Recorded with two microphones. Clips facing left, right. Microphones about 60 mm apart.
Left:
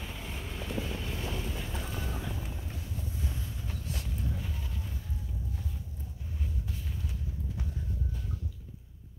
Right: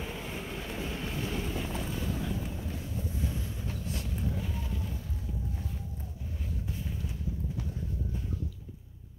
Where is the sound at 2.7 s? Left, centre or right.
Centre.